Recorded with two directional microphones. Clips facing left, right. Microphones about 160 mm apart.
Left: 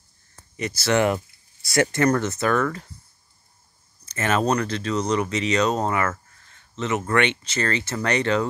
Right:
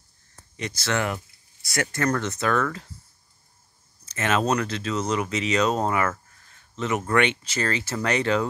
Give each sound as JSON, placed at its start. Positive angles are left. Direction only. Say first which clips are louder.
{"t": 0.6, "sound": "speech", "louder": "left 5 dB", "side_deg": 5}
{"t": 0.9, "sound": "speech", "louder": "left 8 dB", "side_deg": 25}
{"t": 2.0, "sound": "speech", "louder": "left 3 dB", "side_deg": 5}
{"t": 4.0, "sound": "speech", "louder": "left 1 dB", "side_deg": 0}